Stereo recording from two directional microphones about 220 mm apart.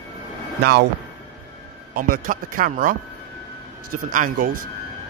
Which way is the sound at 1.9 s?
40° right (ahead or behind).